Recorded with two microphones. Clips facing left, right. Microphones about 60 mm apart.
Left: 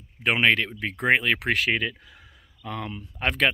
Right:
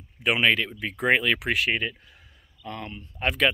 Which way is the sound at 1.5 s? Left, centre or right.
Left.